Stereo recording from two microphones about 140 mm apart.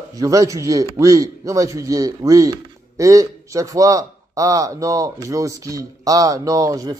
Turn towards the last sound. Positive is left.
turn(degrees=-25)  # may be behind; listen again after turning